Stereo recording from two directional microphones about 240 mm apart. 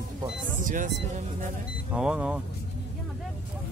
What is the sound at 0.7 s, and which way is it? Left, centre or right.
Speech, right.